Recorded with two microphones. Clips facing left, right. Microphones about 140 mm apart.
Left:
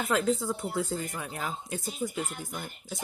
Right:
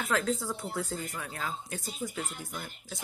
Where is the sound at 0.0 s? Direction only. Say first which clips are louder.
Left 3 dB; 15° left (ahead or behind).